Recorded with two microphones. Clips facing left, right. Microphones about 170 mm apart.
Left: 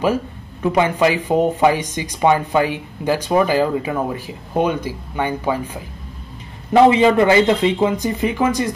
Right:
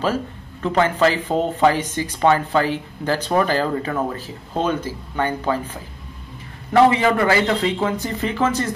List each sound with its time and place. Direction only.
0.0 s speech: 15° left (ahead or behind)